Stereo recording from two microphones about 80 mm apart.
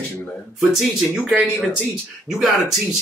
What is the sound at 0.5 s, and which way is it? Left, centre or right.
Speech, centre.